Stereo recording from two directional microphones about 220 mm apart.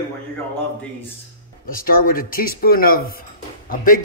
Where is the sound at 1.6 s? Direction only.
40° left (ahead or behind).